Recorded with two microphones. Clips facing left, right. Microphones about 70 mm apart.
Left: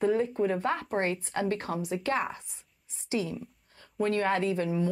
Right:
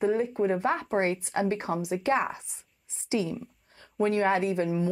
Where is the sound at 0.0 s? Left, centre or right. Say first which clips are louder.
Right 1 dB; centre.